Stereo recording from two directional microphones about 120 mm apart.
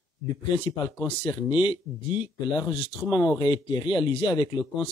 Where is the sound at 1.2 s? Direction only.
40° left (ahead or behind).